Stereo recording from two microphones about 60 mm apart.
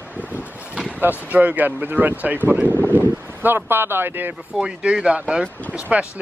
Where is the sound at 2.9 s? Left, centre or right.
Right.